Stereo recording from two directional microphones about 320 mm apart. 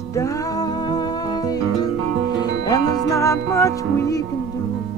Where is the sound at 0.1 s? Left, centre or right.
Centre.